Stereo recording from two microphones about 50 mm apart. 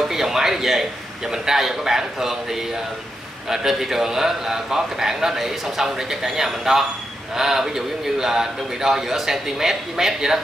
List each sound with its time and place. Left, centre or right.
0.1 s a sound: centre
1.3 s a man's voice: centre
3.4 s a man's voice: centre